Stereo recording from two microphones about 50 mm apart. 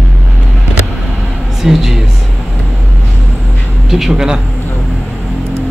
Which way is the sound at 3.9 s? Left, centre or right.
Centre.